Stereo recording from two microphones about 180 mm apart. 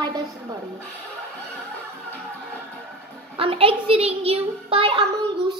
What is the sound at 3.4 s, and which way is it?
Child singing, 30° right (ahead or behind).